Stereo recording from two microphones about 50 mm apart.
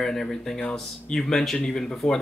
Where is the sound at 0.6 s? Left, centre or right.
Left.